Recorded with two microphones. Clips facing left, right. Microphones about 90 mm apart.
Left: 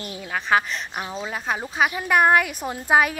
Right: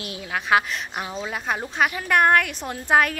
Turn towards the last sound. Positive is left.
turn(degrees=5)  # may be behind; listen again after turning